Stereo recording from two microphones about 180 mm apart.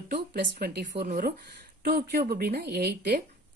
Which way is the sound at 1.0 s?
50° right (ahead or behind).